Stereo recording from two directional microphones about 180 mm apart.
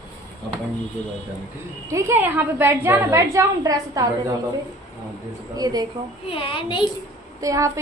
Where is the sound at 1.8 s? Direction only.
15° right (ahead or behind).